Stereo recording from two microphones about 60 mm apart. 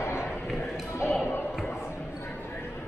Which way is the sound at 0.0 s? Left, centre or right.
Left.